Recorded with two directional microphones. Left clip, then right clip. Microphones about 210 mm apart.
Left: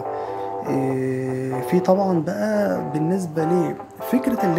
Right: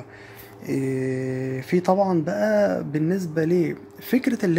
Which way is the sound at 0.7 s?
Centre (ahead or behind).